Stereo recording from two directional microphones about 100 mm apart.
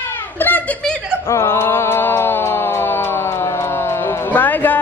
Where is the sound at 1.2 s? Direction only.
30° left (ahead or behind).